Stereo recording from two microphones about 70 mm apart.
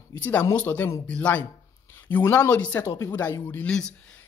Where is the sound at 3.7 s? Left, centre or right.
Centre.